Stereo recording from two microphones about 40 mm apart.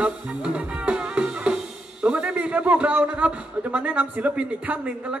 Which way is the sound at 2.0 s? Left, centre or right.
Right.